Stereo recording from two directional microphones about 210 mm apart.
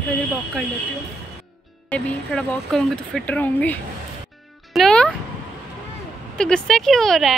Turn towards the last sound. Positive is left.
turn(degrees=0)  # may be behind; listen again after turning